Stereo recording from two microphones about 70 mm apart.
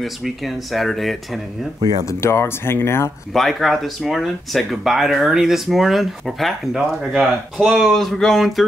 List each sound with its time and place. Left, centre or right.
0.0 s speech: centre
2.0 s speech: left
3.3 s speech: centre